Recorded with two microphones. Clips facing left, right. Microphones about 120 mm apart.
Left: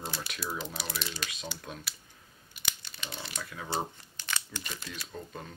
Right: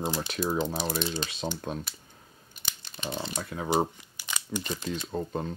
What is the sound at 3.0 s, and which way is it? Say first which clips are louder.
Speech: right 8 dB; 35° right (ahead or behind).